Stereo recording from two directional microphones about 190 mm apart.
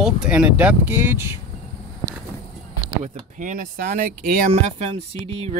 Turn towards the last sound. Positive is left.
turn(degrees=-35)  # may be behind; listen again after turning